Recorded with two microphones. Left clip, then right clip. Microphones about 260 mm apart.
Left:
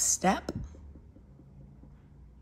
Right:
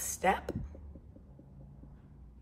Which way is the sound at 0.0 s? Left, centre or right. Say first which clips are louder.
Left 3 dB; left.